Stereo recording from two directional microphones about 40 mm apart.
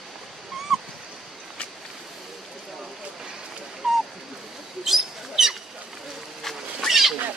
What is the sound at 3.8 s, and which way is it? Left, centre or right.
Bird, centre.